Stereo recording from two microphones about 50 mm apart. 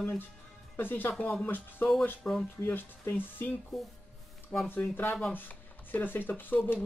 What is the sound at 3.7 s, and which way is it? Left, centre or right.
Speech, centre.